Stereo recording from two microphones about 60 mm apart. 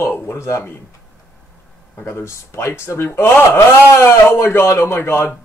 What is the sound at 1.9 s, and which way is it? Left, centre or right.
Speech, left.